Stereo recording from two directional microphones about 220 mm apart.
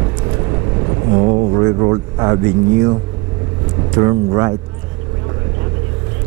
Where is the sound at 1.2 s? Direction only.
30° right (ahead or behind).